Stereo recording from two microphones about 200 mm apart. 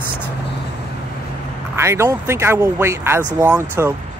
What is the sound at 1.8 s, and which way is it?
Speech, 15° right (ahead or behind).